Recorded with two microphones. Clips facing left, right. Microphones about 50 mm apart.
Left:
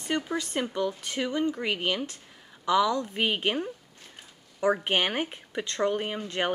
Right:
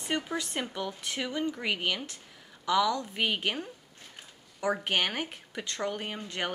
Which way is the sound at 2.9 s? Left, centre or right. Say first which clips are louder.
Left 3 dB; left.